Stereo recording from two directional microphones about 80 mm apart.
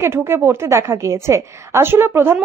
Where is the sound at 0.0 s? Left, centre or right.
Right.